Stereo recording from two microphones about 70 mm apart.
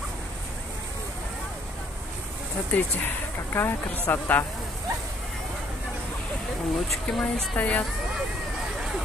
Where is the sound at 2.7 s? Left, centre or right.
Left.